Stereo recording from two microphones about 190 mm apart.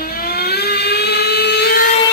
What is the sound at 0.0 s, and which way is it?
Vehicle, 50° left (ahead or behind).